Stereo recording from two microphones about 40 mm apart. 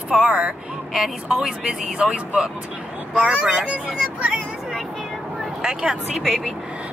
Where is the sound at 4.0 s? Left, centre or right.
Centre.